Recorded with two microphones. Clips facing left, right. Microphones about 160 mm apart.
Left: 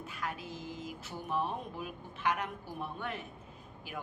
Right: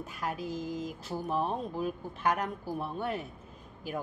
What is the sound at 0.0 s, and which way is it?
A woman's voice, 40° right (ahead or behind).